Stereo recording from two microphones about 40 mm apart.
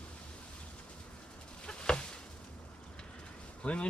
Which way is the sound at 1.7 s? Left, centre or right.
Left.